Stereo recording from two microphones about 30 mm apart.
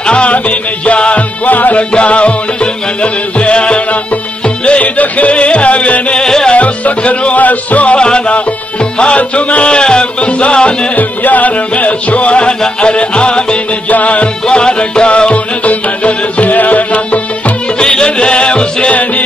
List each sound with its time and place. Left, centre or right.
0.0 s music: left
0.3 s music: left
1.4 s music: left
1.8 s music: left
6.2 s music: centre
6.5 s music: left
7.3 s music: left
7.9 s music: left
9.7 s music: left
11.0 s music: left
13.8 s music: left
14.5 s music: left
15.6 s music: left
17.7 s music: left